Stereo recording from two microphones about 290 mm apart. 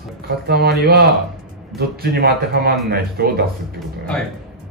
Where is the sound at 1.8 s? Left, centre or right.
Right.